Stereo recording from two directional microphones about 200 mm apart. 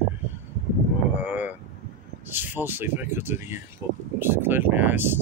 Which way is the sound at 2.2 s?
10° right (ahead or behind).